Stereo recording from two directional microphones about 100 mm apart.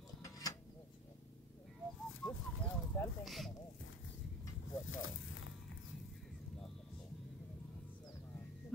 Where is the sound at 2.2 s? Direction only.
5° left (ahead or behind).